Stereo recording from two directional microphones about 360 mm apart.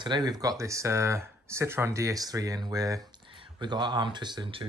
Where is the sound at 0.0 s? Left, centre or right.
Centre.